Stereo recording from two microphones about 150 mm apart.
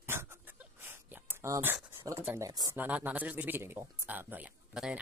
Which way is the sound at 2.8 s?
10° right (ahead or behind).